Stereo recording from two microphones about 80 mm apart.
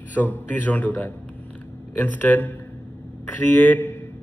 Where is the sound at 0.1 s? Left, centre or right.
Left.